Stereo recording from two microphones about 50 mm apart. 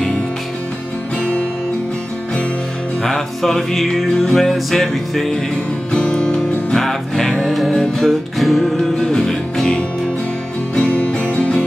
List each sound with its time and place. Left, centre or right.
3.0 s music: centre
5.9 s music: centre
7.4 s music: centre
10.8 s music: left